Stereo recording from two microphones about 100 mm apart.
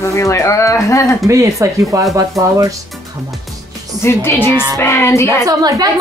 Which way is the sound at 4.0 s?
25° left (ahead or behind).